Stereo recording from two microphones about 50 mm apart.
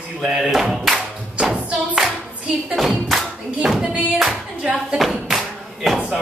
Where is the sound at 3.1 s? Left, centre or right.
Centre.